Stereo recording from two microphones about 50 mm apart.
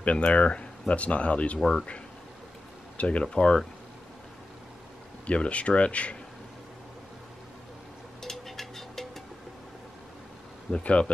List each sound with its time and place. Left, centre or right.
0.0 s speech: left
3.0 s speech: left
3.3 s speech: centre
5.2 s speech: left
8.2 s music: centre
10.7 s speech: left